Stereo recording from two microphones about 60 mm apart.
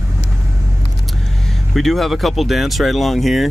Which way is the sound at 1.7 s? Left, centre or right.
Centre.